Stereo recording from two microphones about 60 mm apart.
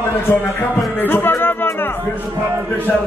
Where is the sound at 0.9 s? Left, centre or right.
Left.